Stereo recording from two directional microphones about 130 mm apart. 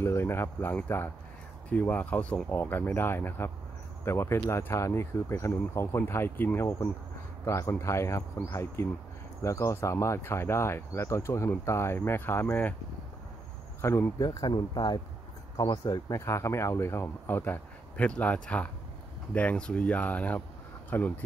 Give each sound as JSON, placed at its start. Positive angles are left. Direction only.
{"t": 0.0, "sound": "speech", "side_deg": 20}
{"t": 13.7, "sound": "speech", "side_deg": 20}